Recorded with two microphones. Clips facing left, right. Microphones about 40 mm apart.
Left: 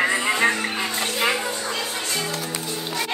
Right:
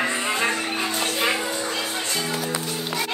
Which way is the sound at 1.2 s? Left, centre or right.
Centre.